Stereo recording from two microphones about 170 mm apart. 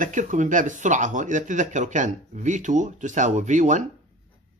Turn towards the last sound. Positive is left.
turn(degrees=-45)  # may be behind; listen again after turning